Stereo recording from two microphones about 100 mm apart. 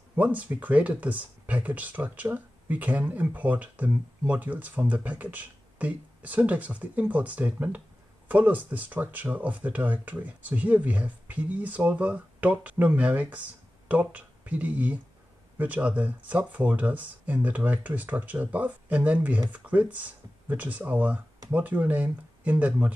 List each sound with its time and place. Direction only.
0.1 s speech: 15° right (ahead or behind)